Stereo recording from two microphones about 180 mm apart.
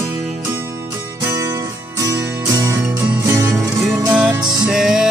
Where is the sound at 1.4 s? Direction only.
15° right (ahead or behind).